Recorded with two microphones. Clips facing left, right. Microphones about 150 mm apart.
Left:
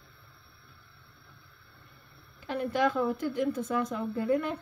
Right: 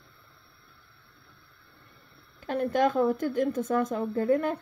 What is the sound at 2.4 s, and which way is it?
A woman's voice, 50° right (ahead or behind).